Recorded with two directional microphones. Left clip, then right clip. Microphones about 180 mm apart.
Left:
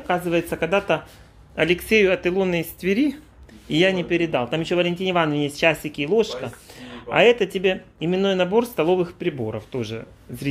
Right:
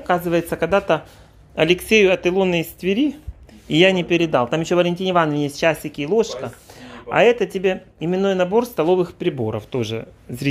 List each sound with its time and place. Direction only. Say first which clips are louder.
0.0 s speech: right 3 dB; 20° right (ahead or behind)
3.6 s speech: right 4 dB; 25° right (ahead or behind)